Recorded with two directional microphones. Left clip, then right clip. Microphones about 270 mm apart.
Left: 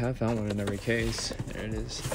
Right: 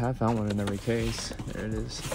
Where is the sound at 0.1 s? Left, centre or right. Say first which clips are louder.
Right 2 dB; centre.